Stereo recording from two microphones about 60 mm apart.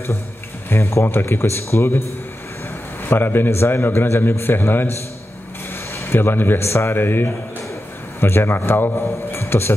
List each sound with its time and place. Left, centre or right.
0.7 s a man's voice: left
5.9 s a man's voice: left